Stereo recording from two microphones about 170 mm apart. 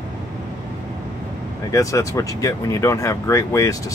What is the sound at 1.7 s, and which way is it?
Speech, 20° left (ahead or behind).